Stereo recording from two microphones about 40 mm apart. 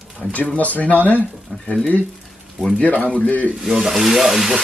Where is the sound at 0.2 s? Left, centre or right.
Left.